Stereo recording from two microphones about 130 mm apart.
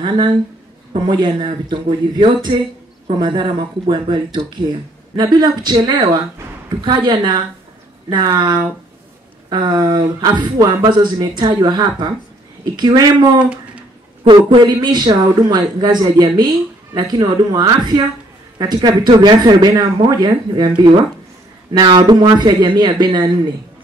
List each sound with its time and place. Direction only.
0.0 s a man's voice: 35° right (ahead or behind)